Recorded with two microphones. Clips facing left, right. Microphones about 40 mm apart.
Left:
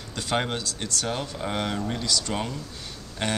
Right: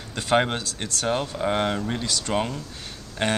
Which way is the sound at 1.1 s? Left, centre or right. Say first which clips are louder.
Right 8 dB; centre.